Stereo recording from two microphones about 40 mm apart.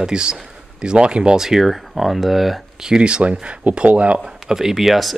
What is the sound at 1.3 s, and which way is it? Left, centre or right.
Speech, centre.